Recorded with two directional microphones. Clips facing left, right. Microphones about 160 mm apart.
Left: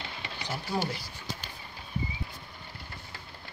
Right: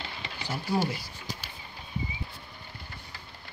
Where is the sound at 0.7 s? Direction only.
10° right (ahead or behind).